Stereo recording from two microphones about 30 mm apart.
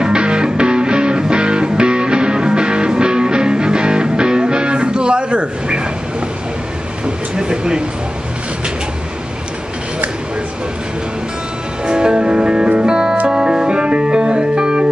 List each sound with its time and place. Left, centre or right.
0.0 s music: right
7.3 s a sound: right
11.8 s music: right